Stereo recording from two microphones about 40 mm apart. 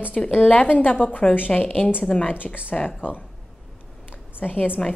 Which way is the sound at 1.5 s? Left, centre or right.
Left.